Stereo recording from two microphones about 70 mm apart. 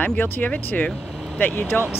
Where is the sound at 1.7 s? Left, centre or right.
Left.